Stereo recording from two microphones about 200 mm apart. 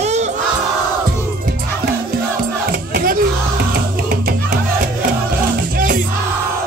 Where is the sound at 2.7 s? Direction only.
50° right (ahead or behind).